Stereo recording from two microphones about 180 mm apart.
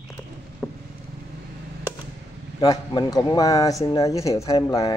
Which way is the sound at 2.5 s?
25° left (ahead or behind).